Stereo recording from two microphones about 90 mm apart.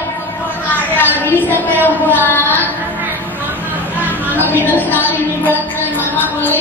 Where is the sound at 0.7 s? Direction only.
20° left (ahead or behind).